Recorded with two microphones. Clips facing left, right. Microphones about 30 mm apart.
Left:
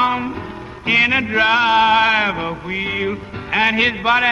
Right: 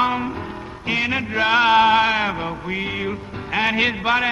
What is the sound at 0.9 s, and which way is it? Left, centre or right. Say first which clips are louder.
Music: left 6 dB; left.